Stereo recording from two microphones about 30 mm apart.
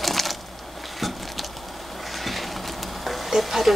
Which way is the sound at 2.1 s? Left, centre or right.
Centre.